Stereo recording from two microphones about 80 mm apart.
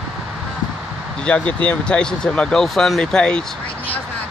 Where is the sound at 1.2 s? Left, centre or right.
Centre.